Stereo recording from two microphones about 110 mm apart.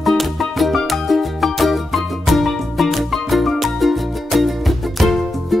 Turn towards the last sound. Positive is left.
turn(degrees=0)  # may be behind; listen again after turning